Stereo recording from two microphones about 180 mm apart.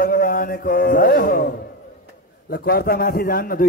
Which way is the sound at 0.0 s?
50° left (ahead or behind).